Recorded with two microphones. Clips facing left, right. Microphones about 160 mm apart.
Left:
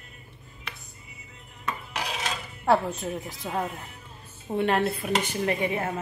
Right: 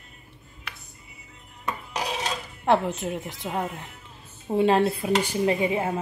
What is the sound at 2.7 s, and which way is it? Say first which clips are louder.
Speech: right 1 dB; 20° right (ahead or behind).